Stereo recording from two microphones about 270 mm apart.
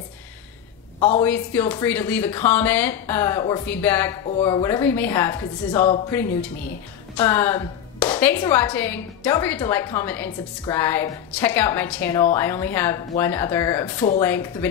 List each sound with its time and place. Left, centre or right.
0.9 s a woman's voice: left
1.2 s a woman's voice: centre
4.4 s a woman's voice: centre
7.2 s a woman's voice: centre